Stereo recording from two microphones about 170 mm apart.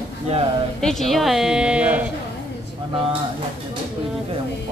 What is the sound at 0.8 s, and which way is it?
A woman's voice, centre (ahead or behind).